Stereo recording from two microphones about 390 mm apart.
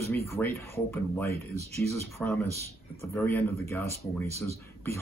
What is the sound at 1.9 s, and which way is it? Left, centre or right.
Speech, centre.